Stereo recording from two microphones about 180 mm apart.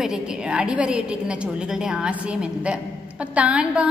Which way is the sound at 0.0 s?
5° right (ahead or behind).